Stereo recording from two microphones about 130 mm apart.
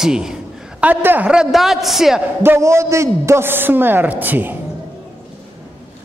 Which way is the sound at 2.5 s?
20° right (ahead or behind).